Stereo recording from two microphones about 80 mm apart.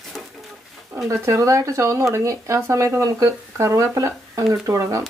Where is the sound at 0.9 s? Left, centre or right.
Right.